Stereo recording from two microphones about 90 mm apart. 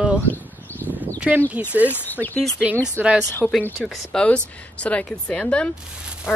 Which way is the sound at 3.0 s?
20° right (ahead or behind).